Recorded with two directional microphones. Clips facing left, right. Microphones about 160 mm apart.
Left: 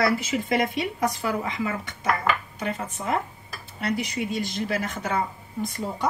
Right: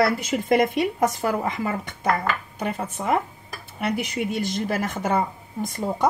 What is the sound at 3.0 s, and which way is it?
A woman's voice, 60° right (ahead or behind).